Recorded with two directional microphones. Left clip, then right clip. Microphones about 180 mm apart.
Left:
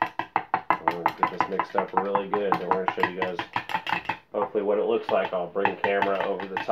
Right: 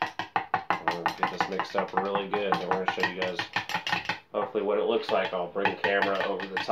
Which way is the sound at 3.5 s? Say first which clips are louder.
Left 2 dB; 10° left (ahead or behind).